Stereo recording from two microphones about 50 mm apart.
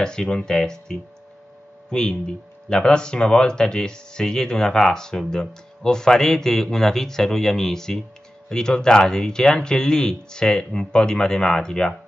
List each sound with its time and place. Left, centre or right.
0.0 s speech: centre